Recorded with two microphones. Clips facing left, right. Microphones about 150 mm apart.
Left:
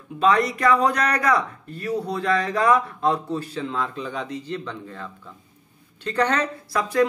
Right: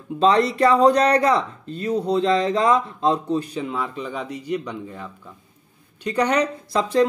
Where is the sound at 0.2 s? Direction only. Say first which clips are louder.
Right 3 dB; 25° right (ahead or behind).